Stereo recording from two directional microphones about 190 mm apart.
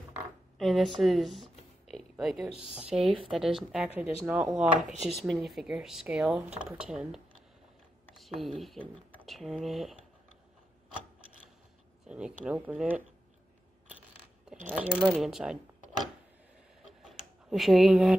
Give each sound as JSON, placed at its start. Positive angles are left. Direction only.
{"t": 0.6, "sound": "speech", "side_deg": 0}
{"t": 8.2, "sound": "speech", "side_deg": 0}
{"t": 12.1, "sound": "speech", "side_deg": -5}
{"t": 14.9, "sound": "speech", "side_deg": 0}
{"t": 17.1, "sound": "a sound", "side_deg": 0}